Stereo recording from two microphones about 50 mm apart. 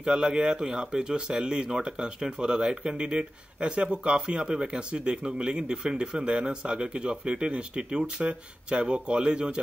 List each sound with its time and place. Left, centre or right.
0.0 s speech: centre